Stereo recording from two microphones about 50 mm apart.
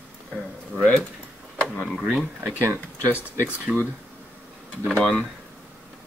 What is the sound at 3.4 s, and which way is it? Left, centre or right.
Speech, right.